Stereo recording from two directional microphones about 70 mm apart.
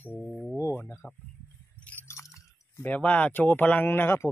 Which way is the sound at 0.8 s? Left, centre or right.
Left.